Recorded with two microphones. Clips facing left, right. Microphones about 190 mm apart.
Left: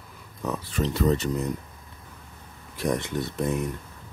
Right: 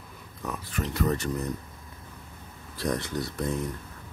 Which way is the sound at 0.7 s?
25° left (ahead or behind).